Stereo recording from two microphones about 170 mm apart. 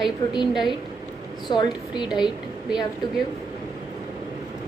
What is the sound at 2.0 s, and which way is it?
Speech, 5° right (ahead or behind).